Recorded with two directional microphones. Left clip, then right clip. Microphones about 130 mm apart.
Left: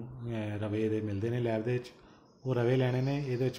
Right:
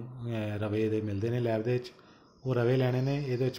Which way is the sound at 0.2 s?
25° right (ahead or behind).